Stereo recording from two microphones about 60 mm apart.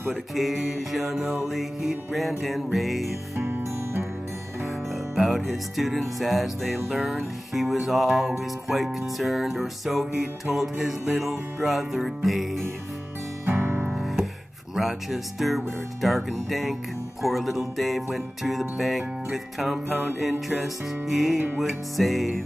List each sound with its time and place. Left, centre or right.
0.1 s music: centre
3.3 s music: right
4.6 s music: centre
13.5 s music: right
13.9 s music: centre